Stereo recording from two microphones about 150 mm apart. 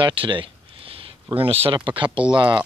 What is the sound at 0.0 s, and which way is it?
Speech, 35° right (ahead or behind).